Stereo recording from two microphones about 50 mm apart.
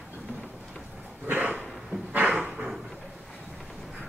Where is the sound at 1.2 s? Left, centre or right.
Right.